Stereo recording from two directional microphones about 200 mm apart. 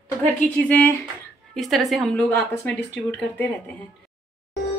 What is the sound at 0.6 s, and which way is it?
A woman's voice, 10° left (ahead or behind).